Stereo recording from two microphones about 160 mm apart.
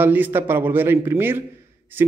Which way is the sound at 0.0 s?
10° right (ahead or behind).